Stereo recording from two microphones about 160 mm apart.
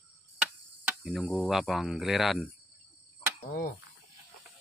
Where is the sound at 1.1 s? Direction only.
Centre (ahead or behind).